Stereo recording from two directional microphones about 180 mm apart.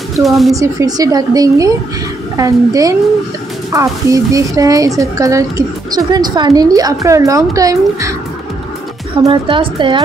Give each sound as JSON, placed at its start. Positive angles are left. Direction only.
{"t": 0.1, "sound": "speech", "side_deg": 0}
{"t": 0.6, "sound": "speech", "side_deg": -20}
{"t": 9.2, "sound": "speech", "side_deg": -25}